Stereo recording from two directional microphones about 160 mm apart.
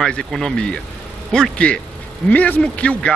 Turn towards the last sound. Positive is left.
turn(degrees=5)  # may be behind; listen again after turning